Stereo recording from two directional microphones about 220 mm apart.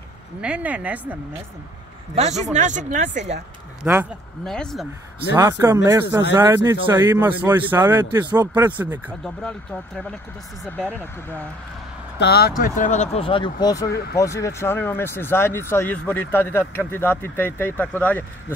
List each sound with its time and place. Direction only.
0.4 s a man's voice: 5° right (ahead or behind)
2.1 s a man's voice: 30° right (ahead or behind)
3.2 s speech: 50° right (ahead or behind)
3.8 s a man's voice: 10° right (ahead or behind)
4.5 s speech: centre (ahead or behind)
5.3 s a man's voice: 15° right (ahead or behind)
9.4 s speech: 5° left (ahead or behind)
12.2 s speech: 45° left (ahead or behind); by 18.2 s 5° left (ahead or behind)